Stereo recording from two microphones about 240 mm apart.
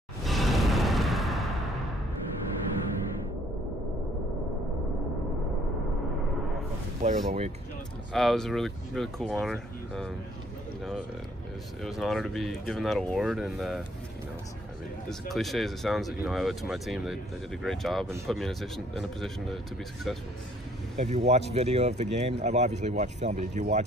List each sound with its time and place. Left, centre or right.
0.2 s music: centre
7.0 s speech: right
8.1 s speech: centre
11.8 s speech: centre
15.0 s speech: centre
20.9 s speech: right